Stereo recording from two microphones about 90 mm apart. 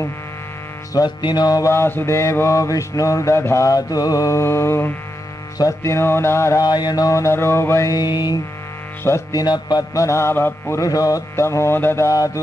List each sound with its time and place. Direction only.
0.9 s music: 55° left (ahead or behind)
1.7 s mantra: 25° left (ahead or behind)
6.6 s mantra: 50° left (ahead or behind); by 8.0 s 35° left (ahead or behind)
8.0 s music: 50° left (ahead or behind)
9.9 s mantra: 35° left (ahead or behind)
10.8 s mantra: 40° left (ahead or behind)